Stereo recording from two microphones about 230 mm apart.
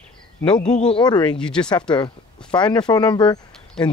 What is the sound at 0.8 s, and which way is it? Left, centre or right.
Speech, centre.